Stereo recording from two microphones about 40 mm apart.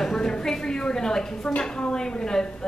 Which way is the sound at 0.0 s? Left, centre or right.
Centre.